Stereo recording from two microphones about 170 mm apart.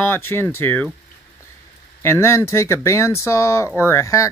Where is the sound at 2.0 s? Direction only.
15° left (ahead or behind).